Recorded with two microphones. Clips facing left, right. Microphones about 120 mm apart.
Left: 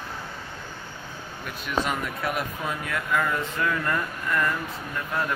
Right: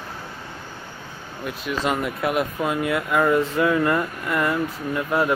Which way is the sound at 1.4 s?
Centre (ahead or behind).